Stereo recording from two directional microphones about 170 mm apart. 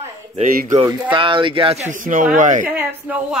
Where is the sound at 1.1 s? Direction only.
30° right (ahead or behind); by 2.7 s 50° right (ahead or behind).